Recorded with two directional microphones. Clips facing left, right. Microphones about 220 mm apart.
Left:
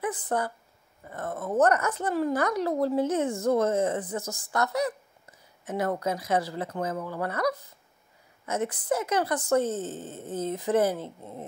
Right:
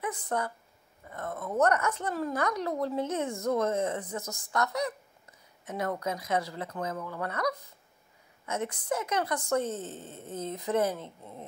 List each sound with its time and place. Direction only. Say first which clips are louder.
0.0 s a woman's voice: left 3 dB; 30° left (ahead or behind)